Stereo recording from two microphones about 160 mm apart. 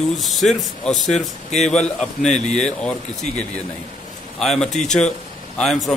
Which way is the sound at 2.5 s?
5° left (ahead or behind).